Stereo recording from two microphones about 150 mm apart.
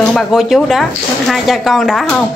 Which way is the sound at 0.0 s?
5° left (ahead or behind).